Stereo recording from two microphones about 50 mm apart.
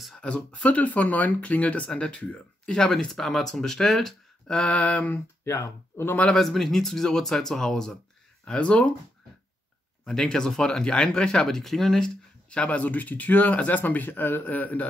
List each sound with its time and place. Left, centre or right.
0.1 s speech: left
4.7 s speech: left
5.4 s speech: left
6.3 s speech: centre
8.5 s speech: left
10.0 s speech: centre
12.4 s speech: left
13.7 s speech: left